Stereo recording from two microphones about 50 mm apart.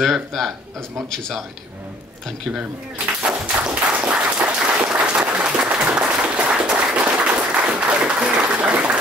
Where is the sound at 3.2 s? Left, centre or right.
Right.